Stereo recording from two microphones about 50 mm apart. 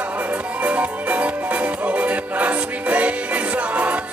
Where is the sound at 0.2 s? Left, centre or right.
Right.